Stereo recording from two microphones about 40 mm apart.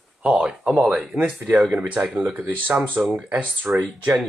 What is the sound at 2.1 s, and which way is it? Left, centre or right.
Speech, right.